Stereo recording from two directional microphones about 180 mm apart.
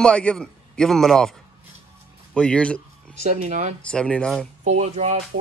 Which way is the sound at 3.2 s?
40° right (ahead or behind).